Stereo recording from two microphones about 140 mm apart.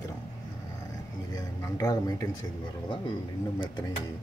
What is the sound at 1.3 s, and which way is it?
Speech, 25° left (ahead or behind).